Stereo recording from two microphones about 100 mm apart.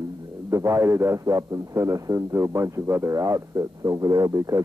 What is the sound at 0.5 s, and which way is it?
Speech, 30° right (ahead or behind).